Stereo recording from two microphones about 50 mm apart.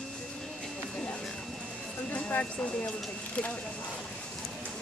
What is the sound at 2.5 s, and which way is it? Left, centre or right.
Speech, centre.